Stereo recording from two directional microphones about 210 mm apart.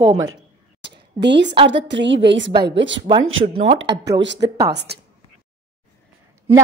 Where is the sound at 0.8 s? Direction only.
55° right (ahead or behind).